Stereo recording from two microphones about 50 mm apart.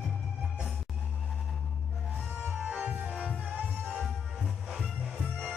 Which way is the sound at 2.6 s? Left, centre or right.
Right.